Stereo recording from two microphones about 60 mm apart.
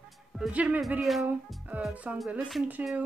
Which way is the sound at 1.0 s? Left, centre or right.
Centre.